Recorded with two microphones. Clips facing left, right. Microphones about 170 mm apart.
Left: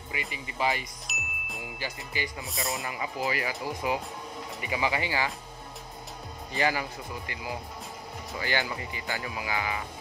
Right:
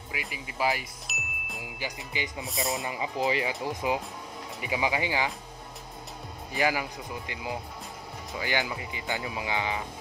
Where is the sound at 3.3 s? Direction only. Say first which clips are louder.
Right 3 dB; 25° right (ahead or behind).